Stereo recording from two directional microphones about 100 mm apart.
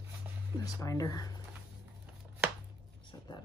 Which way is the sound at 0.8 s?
35° left (ahead or behind).